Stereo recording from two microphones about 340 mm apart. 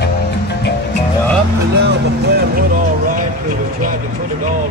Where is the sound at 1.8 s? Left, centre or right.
Right.